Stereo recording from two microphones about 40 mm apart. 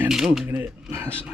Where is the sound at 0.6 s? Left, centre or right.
Right.